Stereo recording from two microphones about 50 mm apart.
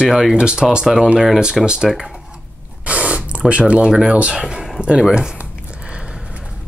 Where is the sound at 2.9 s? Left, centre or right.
Right.